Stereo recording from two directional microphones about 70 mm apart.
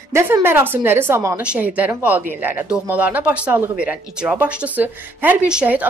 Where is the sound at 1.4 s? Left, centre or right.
Centre.